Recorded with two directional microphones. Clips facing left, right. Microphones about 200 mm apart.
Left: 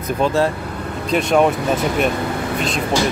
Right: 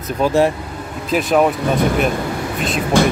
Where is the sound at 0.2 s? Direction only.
15° right (ahead or behind).